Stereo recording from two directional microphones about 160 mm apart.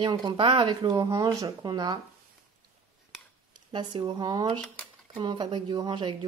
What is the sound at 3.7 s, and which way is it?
Speech, 30° right (ahead or behind).